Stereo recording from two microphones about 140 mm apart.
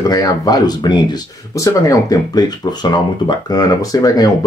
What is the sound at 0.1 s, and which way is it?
Speech, 30° left (ahead or behind).